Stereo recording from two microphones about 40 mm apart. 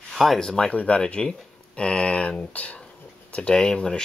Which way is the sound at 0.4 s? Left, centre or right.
Centre.